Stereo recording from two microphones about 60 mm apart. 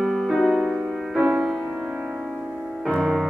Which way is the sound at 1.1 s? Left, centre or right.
Centre.